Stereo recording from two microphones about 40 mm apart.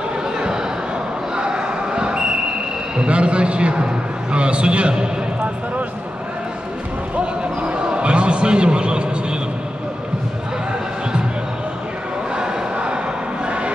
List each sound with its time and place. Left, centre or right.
1.3 s basketball bounce: right
3.0 s a man's voice: right
7.2 s basketball bounce: right
12.4 s vehicle: right